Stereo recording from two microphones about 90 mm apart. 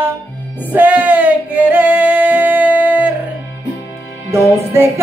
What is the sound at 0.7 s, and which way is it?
Singing, 15° right (ahead or behind).